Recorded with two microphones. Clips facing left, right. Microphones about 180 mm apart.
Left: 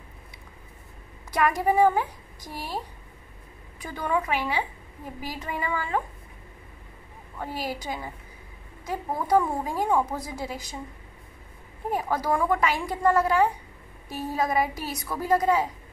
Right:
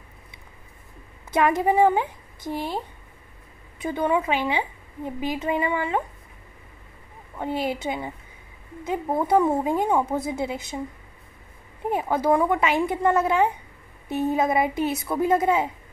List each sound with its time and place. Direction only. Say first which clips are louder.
1.4 s a woman's voice: right 2 dB; 20° right (ahead or behind)
3.8 s a woman's voice: right 5 dB; 25° right (ahead or behind)
7.3 s a woman's voice: right 6 dB; 20° right (ahead or behind)
11.9 s a woman's voice: right 5 dB; 20° right (ahead or behind)